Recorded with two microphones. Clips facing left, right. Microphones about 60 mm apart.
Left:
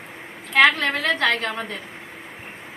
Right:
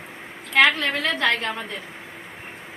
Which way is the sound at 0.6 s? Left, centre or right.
Left.